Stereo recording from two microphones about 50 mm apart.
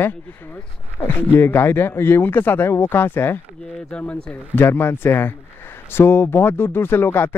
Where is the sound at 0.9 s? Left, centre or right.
Left.